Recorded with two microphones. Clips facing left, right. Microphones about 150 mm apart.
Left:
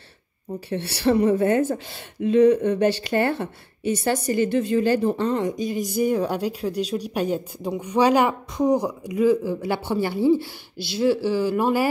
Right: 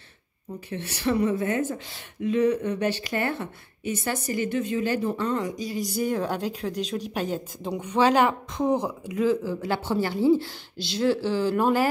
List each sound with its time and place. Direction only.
0.5 s a woman's voice: 35° left (ahead or behind); by 11.9 s 10° left (ahead or behind)